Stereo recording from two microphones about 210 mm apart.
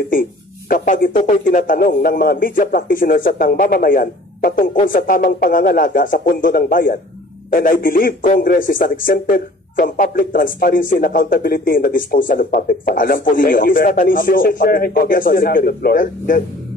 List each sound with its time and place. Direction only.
0.1 s speech: 40° left (ahead or behind)